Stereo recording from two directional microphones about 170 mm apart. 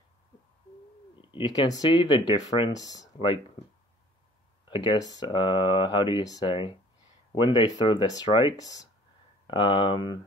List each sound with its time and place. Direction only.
1.3 s speech: 25° left (ahead or behind)
4.6 s speech: 25° left (ahead or behind)